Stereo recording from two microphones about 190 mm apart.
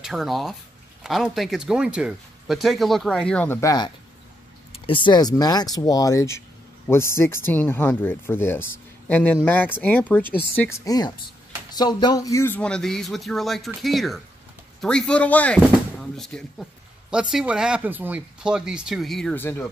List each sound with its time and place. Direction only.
0.0 s speech: centre (ahead or behind)
3.6 s speech: 20° left (ahead or behind)